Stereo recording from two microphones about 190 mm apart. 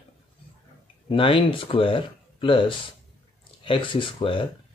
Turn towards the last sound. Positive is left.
turn(degrees=25)  # may be behind; listen again after turning